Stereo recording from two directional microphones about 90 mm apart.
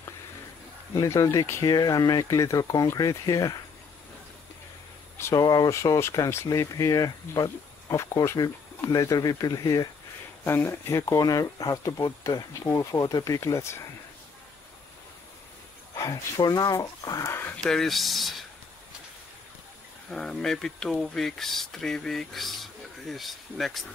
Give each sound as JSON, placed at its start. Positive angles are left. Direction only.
{"t": 0.9, "sound": "speech", "side_deg": 35}
{"t": 5.3, "sound": "speech", "side_deg": 45}
{"t": 8.4, "sound": "speech", "side_deg": 40}
{"t": 10.4, "sound": "speech", "side_deg": 25}
{"t": 15.9, "sound": "speech", "side_deg": 40}
{"t": 17.6, "sound": "speech", "side_deg": 5}
{"t": 20.1, "sound": "speech", "side_deg": 5}